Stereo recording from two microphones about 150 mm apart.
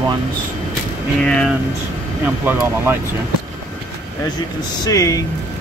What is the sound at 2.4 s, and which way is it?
Speech, 15° right (ahead or behind).